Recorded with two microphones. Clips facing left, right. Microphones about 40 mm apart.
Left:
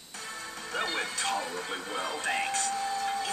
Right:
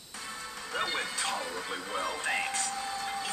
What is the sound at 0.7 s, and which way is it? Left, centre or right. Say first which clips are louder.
Music: left 1 dB; centre.